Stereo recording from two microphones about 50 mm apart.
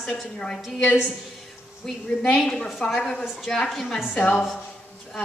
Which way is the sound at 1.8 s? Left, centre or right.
Centre.